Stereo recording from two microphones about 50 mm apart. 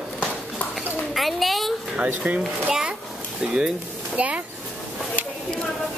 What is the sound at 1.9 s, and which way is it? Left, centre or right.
Speech, right.